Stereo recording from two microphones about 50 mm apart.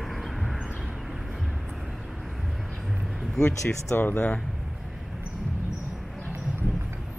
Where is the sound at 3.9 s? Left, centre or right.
Left.